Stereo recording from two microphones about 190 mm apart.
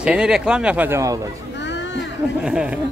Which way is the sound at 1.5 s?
70° left (ahead or behind).